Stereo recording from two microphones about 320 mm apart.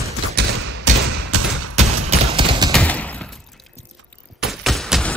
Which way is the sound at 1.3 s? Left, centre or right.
Right.